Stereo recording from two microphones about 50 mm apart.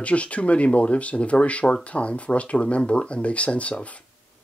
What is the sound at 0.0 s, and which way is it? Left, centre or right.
Speech, left.